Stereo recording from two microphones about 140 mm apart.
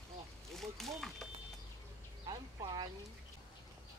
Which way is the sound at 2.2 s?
35° right (ahead or behind).